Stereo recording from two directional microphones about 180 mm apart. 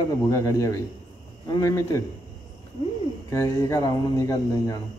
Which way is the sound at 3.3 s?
15° left (ahead or behind).